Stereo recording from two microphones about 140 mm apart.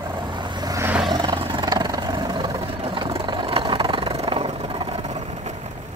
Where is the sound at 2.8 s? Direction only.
40° right (ahead or behind).